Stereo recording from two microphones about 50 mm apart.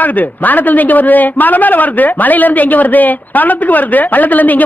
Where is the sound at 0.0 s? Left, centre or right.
Left.